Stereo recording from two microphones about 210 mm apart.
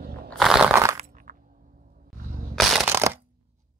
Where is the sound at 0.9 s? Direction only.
40° right (ahead or behind).